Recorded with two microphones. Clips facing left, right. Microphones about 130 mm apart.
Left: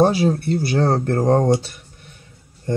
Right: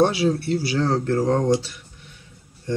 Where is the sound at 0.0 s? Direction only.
45° left (ahead or behind).